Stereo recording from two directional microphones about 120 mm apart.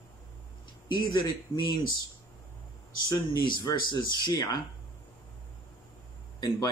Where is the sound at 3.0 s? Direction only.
40° left (ahead or behind).